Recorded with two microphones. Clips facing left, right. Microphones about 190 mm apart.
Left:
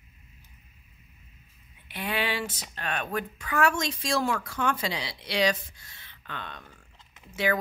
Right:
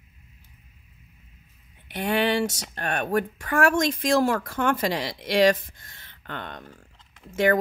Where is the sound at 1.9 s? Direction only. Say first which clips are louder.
Right 7 dB; 45° right (ahead or behind).